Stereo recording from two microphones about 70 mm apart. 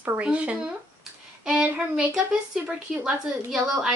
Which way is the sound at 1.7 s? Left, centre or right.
Centre.